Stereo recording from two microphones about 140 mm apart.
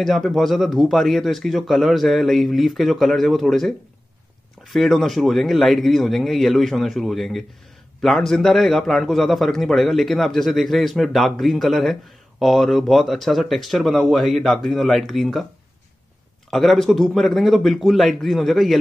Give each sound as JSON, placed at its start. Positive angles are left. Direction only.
{"t": 0.0, "sound": "a man's voice", "side_deg": 0}
{"t": 16.4, "sound": "a man's voice", "side_deg": 0}